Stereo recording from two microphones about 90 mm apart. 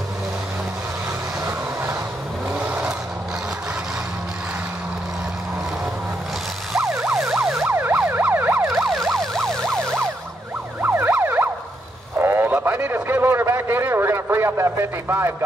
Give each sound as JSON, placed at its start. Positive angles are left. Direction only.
{"t": 7.0, "sound": "emergency vehicle", "side_deg": -5}
{"t": 7.6, "sound": "emergency vehicle", "side_deg": -25}
{"t": 8.8, "sound": "emergency vehicle", "side_deg": -5}
{"t": 10.8, "sound": "emergency vehicle", "side_deg": -25}
{"t": 12.2, "sound": "radio", "side_deg": -25}